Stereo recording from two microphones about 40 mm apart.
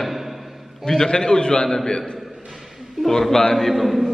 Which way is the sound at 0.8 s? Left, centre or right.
Centre.